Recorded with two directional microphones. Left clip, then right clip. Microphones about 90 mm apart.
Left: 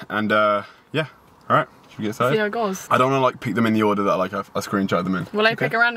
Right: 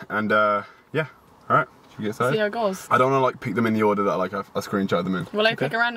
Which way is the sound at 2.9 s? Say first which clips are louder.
Left 2 dB; 15° left (ahead or behind).